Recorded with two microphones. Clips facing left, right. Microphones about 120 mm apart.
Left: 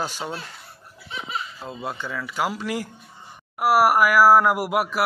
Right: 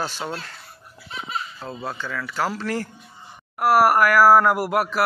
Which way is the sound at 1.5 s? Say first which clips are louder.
Even; 15° left (ahead or behind).